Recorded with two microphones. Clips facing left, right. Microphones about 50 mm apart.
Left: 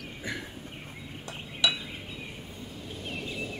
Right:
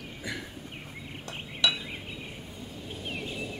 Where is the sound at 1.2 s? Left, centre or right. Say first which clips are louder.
Even; centre.